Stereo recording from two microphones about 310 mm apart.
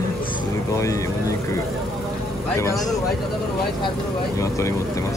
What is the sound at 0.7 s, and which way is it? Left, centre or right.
Speech, centre.